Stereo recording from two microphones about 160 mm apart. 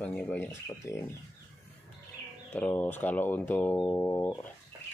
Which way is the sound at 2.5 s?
15° left (ahead or behind).